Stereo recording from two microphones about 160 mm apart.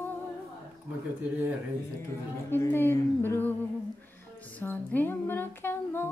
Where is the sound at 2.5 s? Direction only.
15° left (ahead or behind).